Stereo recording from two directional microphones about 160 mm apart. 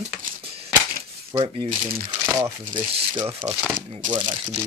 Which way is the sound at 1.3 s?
30° right (ahead or behind).